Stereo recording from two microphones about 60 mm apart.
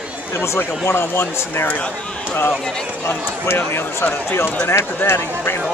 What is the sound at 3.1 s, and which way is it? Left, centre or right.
Speech, left.